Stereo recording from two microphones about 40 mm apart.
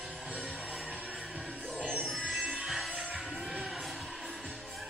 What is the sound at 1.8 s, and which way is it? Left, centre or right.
Music, right.